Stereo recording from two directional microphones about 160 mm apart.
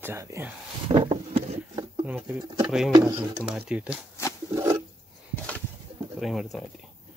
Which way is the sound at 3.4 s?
5° right (ahead or behind).